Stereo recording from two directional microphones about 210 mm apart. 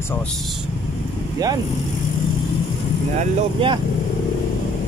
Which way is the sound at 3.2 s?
30° right (ahead or behind).